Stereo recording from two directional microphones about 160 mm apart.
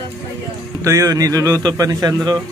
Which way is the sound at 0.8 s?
20° right (ahead or behind).